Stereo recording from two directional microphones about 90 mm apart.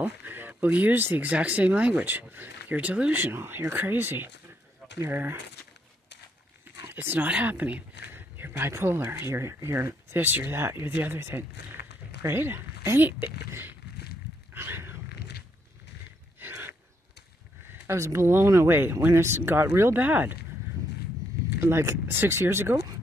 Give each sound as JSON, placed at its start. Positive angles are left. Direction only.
{"t": 0.0, "sound": "speech", "side_deg": -20}
{"t": 6.8, "sound": "speech", "side_deg": -25}
{"t": 14.5, "sound": "a sound", "side_deg": -25}
{"t": 16.3, "sound": "a sound", "side_deg": -25}
{"t": 17.8, "sound": "speech", "side_deg": -30}
{"t": 21.5, "sound": "speech", "side_deg": -25}